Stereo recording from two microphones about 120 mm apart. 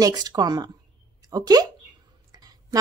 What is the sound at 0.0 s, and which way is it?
A woman's voice, 35° right (ahead or behind).